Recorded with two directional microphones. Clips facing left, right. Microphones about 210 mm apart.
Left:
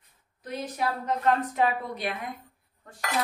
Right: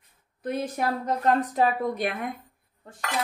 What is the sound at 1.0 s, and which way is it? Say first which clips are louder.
A woman's voice: right 1 dB; 40° right (ahead or behind).